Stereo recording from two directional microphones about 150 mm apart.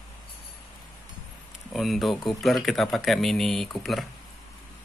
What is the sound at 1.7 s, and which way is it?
Speech, centre (ahead or behind).